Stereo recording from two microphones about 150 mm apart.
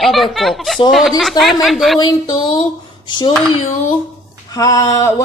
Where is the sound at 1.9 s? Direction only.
30° left (ahead or behind).